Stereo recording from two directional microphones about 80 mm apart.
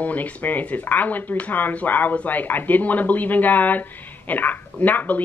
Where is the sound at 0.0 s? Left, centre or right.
Centre.